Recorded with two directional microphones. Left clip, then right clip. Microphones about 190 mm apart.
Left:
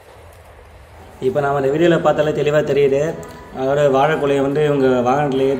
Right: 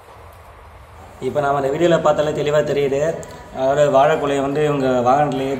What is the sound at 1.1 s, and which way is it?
A man's voice, 5° left (ahead or behind).